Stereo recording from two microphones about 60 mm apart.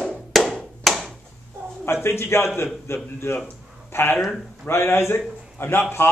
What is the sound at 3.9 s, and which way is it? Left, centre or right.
A man's voice, left.